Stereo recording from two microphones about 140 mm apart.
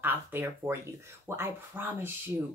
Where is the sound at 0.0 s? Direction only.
15° right (ahead or behind).